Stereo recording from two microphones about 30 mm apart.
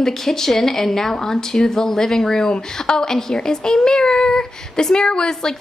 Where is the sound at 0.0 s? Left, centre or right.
Centre.